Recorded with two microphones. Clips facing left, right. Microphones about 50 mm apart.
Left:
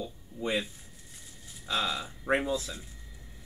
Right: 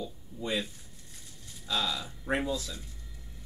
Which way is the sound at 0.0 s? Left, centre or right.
Left.